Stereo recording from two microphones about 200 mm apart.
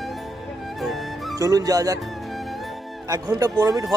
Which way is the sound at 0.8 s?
Centre (ahead or behind).